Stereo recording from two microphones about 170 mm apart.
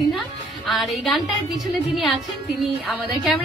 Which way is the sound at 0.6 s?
Centre (ahead or behind).